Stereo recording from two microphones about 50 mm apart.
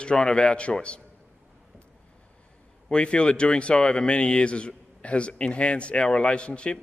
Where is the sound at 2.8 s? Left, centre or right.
Centre.